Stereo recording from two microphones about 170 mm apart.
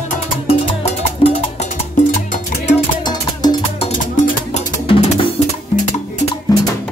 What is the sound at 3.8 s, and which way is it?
Music, 45° left (ahead or behind).